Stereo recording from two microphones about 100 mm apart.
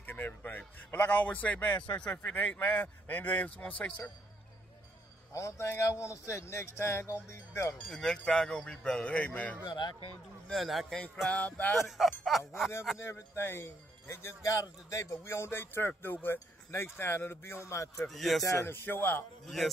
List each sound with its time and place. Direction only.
0.0 s a man's voice: 20° left (ahead or behind)
5.3 s a man's voice: 30° left (ahead or behind)
7.7 s a man's voice: 5° left (ahead or behind)
9.7 s speech: 45° left (ahead or behind)
10.5 s speech: centre (ahead or behind)
11.2 s a man's voice: 15° left (ahead or behind)
11.7 s speech: centre (ahead or behind)
13.0 s a man's voice: 25° left (ahead or behind)
18.0 s speech: centre (ahead or behind)
18.4 s a man's voice: 30° left (ahead or behind)
19.4 s speech: centre (ahead or behind)